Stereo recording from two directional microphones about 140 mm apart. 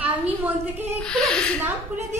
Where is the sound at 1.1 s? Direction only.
5° left (ahead or behind).